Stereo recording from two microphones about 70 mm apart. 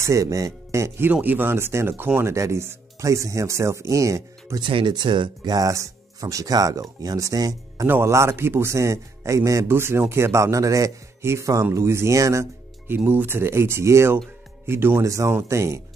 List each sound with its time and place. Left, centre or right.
0.0 s speech: right
1.1 s speech: right
4.6 s speech: right
5.7 s speech: right
7.8 s speech: right
9.7 s speech: right
12.8 s speech: right
15.0 s speech: right